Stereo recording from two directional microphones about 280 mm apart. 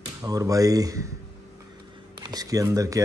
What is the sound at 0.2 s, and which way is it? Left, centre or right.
Speech, centre.